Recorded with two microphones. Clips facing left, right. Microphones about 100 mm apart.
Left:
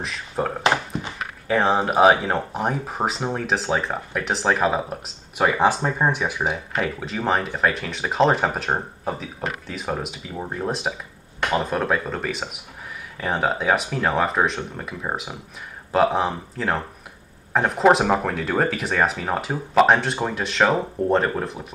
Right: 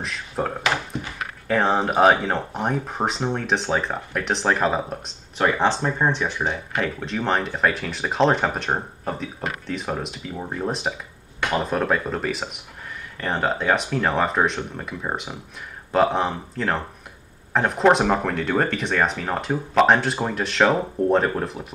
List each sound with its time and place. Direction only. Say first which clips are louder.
0.0 s speech: left 1 dB; centre (ahead or behind)